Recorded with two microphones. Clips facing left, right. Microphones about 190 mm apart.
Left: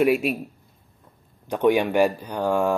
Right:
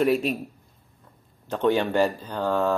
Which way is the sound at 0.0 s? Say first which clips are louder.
Left 2 dB; 10° left (ahead or behind).